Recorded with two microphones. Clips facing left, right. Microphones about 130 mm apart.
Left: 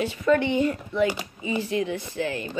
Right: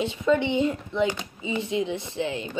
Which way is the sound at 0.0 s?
20° right (ahead or behind).